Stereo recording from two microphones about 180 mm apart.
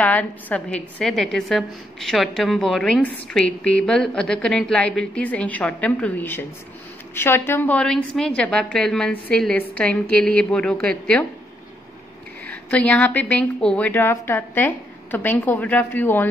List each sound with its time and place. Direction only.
0.0 s a woman's voice: 10° left (ahead or behind)
12.6 s a woman's voice: 10° left (ahead or behind)